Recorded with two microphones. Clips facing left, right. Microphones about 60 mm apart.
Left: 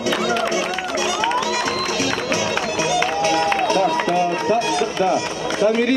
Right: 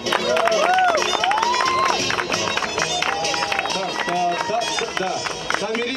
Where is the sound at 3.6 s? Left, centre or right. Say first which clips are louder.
Left 7 dB; left.